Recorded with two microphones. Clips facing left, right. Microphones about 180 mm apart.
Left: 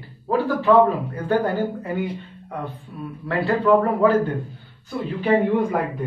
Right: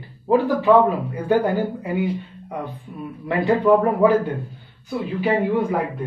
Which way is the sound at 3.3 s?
15° right (ahead or behind).